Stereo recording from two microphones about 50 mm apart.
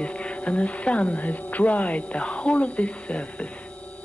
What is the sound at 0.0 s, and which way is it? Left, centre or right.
Speech, left.